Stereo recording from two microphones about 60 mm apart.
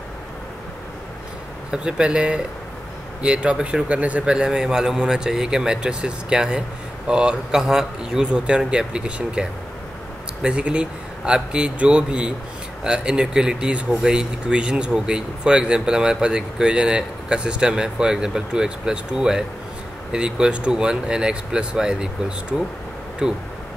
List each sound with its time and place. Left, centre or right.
1.7 s speech: centre
4.2 s speech: centre